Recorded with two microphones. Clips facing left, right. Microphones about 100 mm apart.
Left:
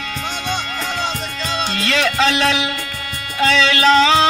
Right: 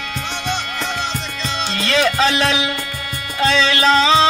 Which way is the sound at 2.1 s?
Centre (ahead or behind).